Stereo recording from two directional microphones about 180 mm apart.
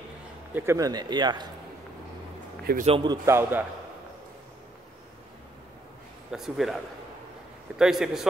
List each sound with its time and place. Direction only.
0.6 s speech: 15° right (ahead or behind)
2.8 s speech: 30° right (ahead or behind)
3.3 s a man's voice: 15° right (ahead or behind)
6.3 s a man's voice: centre (ahead or behind)